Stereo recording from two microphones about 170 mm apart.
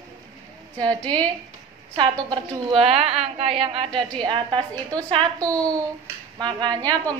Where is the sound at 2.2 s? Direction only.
25° right (ahead or behind).